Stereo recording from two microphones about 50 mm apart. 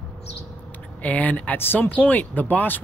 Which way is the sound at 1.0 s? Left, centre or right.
Left.